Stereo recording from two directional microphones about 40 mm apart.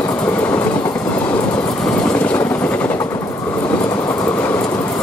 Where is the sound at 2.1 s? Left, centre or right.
Left.